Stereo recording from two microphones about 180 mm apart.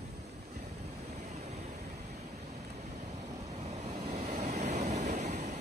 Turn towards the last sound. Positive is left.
turn(degrees=-40)  # may be behind; listen again after turning